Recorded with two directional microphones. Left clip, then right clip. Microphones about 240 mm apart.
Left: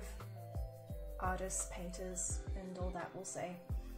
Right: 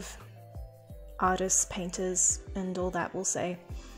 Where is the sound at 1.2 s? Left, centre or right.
Right.